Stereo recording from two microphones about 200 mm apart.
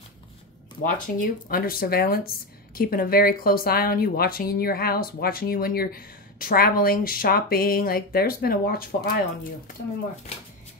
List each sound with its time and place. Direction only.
0.8 s speech: 45° left (ahead or behind)